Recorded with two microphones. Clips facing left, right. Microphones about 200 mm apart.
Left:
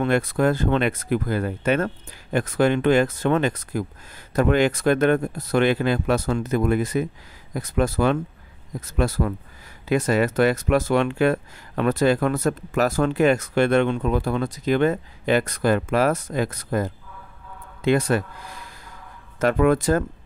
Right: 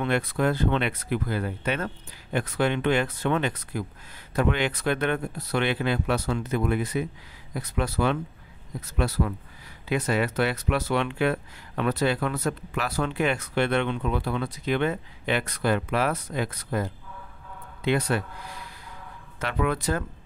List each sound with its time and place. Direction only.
0.0 s speech: 45° left (ahead or behind)